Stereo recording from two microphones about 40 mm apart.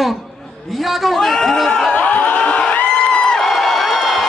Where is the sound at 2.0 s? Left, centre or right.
Left.